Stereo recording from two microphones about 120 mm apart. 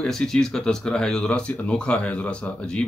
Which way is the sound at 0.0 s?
5° left (ahead or behind).